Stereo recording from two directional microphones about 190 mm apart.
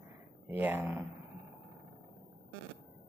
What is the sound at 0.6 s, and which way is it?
Speech, 10° right (ahead or behind).